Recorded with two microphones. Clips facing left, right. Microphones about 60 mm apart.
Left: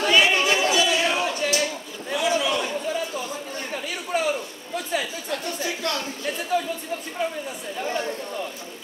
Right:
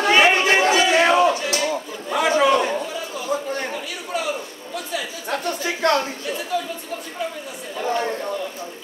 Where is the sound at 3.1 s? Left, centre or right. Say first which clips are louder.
Right 6 dB; left.